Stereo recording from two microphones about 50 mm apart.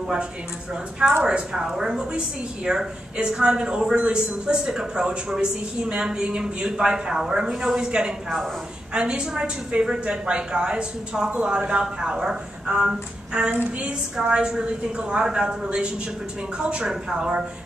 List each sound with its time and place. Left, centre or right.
1.2 s a woman's voice: centre